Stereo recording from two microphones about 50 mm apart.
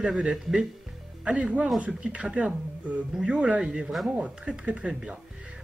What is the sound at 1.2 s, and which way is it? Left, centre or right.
Speech, right.